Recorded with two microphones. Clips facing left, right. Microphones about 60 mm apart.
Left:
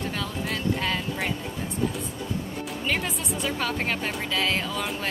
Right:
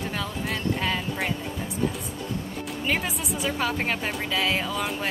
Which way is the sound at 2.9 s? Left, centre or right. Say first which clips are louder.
Right 1 dB; centre.